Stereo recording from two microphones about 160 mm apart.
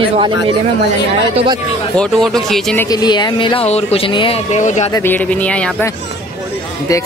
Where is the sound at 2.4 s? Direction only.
Centre (ahead or behind).